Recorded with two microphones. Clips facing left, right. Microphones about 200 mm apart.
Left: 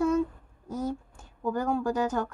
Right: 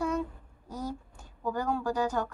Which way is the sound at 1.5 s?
50° left (ahead or behind).